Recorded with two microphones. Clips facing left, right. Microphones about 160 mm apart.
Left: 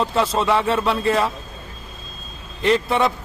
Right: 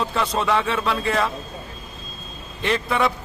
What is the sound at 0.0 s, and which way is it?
Speech, centre (ahead or behind).